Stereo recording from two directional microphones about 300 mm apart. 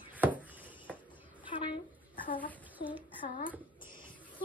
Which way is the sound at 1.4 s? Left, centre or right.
Centre.